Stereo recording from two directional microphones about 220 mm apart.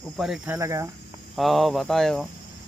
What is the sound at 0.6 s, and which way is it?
Speech, 15° right (ahead or behind).